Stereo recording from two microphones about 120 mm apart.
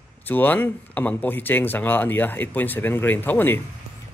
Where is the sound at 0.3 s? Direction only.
15° left (ahead or behind).